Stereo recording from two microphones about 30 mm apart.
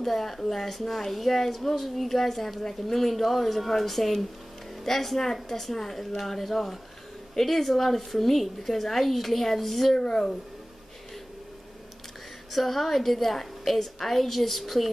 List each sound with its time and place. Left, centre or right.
0.0 s a woman's voice: centre
9.9 s speech: left
12.5 s a woman's voice: centre